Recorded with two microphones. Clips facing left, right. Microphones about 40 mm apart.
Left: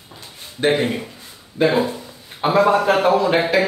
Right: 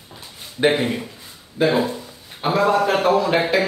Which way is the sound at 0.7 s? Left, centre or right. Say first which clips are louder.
Left 1 dB; centre.